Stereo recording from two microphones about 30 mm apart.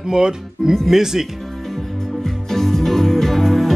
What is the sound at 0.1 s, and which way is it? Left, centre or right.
Speech, right.